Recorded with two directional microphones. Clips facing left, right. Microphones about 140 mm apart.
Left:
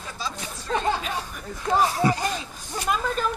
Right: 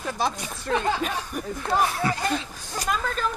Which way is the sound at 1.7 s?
15° left (ahead or behind).